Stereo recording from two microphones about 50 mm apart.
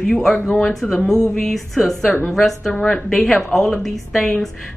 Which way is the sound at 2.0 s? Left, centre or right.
Left.